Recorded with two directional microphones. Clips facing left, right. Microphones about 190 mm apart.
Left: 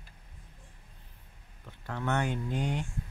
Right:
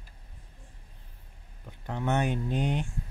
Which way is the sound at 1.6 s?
20° right (ahead or behind).